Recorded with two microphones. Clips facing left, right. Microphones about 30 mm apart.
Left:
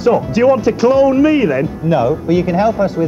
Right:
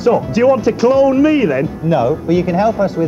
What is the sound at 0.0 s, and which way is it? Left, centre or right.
Speech, centre.